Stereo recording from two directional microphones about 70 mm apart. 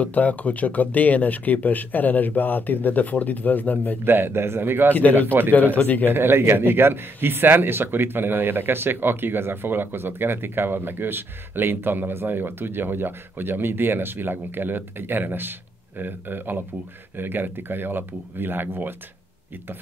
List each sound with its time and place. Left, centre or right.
0.0 s speech: left
4.0 s speech: right
4.9 s speech: left
6.1 s speech: right